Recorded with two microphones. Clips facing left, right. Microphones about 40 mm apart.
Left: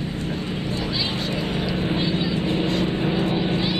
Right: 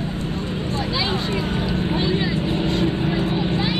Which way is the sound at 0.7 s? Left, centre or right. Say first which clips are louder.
Right 4 dB; right.